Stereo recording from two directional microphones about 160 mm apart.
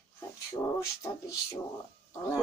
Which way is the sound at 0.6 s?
25° left (ahead or behind).